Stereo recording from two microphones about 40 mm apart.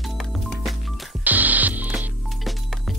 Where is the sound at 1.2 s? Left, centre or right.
Right.